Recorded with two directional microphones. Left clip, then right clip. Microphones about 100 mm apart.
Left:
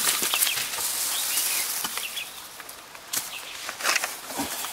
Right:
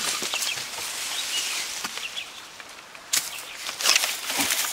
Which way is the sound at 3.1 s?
15° right (ahead or behind).